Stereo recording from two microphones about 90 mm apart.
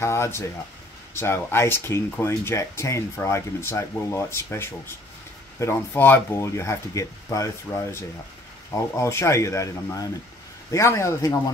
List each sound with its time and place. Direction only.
0.0 s speech: 30° left (ahead or behind)
5.9 s speech: 20° left (ahead or behind)